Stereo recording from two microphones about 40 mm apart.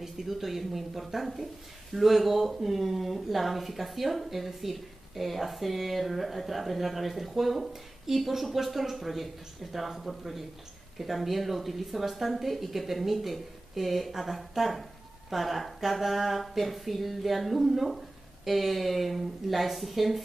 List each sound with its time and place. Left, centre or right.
0.0 s a woman's voice: centre